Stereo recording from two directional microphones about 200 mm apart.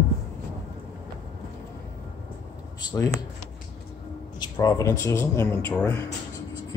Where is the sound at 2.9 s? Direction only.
15° left (ahead or behind).